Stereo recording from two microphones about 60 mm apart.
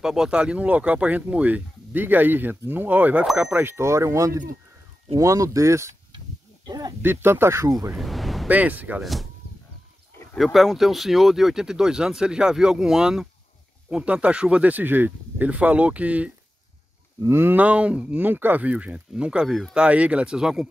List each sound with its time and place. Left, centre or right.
0.0 s speech: centre; by 3.3 s right
3.5 s speech: right
6.7 s speech: right
7.0 s speech: right
8.0 s a sound: centre
8.5 s speech: right
9.0 s speech: centre
10.3 s speech: centre
14.7 s speech: right
17.3 s speech: right
17.6 s speech: right
18.3 s speech: right; by 20.6 s centre